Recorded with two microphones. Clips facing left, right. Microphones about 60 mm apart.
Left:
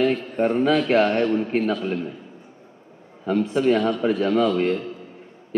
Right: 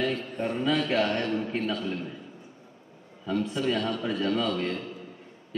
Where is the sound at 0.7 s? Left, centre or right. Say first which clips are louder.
Left 5 dB; left.